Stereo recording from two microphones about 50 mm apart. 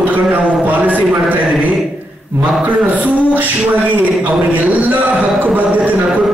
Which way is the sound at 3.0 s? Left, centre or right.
Right.